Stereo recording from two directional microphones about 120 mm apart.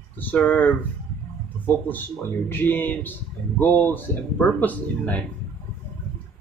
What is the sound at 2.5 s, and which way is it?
Speech, 15° left (ahead or behind).